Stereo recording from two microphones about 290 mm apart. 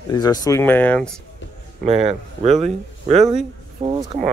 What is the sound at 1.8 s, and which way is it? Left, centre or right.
Speech, right.